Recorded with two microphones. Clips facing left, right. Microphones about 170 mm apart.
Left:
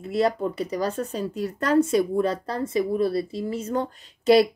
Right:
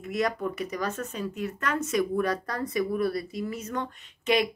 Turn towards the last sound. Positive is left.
turn(degrees=35)  # may be behind; listen again after turning